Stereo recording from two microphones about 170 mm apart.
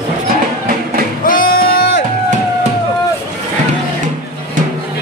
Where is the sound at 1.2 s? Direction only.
55° left (ahead or behind).